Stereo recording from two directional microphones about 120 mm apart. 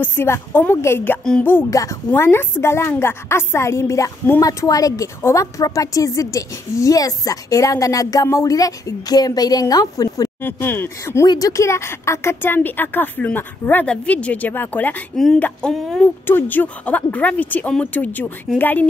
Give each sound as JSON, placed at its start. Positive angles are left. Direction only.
{"t": 0.0, "sound": "a woman's voice", "side_deg": 20}
{"t": 10.4, "sound": "a woman's voice", "side_deg": 20}
{"t": 15.7, "sound": "speech", "side_deg": 0}
{"t": 16.0, "sound": "speech", "side_deg": 15}